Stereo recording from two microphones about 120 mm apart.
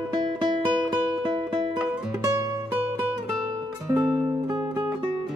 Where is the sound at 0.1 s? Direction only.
35° right (ahead or behind).